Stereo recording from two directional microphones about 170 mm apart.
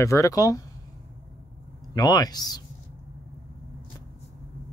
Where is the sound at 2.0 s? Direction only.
25° left (ahead or behind).